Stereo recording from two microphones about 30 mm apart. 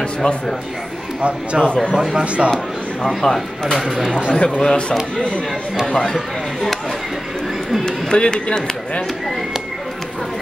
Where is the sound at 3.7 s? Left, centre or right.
Centre.